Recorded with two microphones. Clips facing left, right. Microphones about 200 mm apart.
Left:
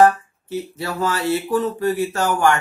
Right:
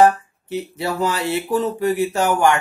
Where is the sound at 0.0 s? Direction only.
15° right (ahead or behind).